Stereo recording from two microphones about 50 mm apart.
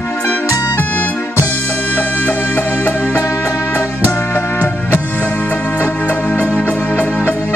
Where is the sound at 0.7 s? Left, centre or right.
Left.